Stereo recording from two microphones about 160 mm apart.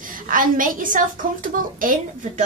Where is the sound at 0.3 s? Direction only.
60° right (ahead or behind).